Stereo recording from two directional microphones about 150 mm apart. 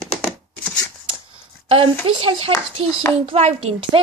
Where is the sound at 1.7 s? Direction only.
40° right (ahead or behind).